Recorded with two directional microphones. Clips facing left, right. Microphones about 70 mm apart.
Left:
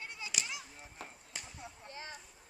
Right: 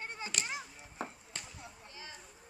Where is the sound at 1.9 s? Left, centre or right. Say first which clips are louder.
Left 5 dB; left.